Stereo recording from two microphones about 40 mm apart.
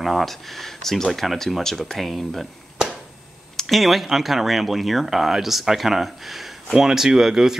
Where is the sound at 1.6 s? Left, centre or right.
Centre.